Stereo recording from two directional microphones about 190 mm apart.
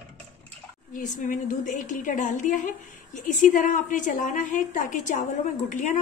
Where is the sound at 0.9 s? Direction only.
40° left (ahead or behind).